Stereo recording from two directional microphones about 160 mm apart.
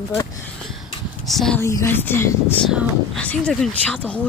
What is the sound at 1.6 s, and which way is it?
Speech, 15° left (ahead or behind).